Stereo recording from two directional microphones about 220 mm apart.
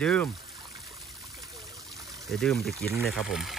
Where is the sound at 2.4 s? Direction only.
Centre (ahead or behind).